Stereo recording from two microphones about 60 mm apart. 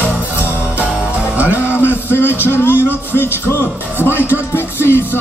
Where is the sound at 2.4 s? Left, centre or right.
Left.